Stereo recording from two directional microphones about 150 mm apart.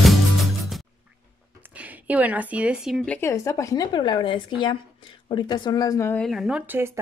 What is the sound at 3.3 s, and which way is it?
Speech, 20° left (ahead or behind).